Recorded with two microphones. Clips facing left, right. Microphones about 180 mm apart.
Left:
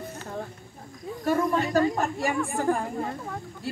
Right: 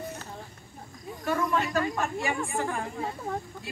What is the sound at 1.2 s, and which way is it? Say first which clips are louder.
Speech: left 3 dB; 35° left (ahead or behind).